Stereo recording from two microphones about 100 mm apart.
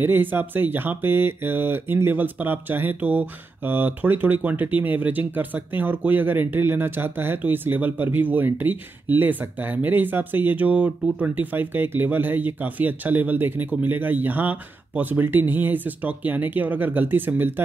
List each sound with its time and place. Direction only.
0.0 s speech: 20° right (ahead or behind)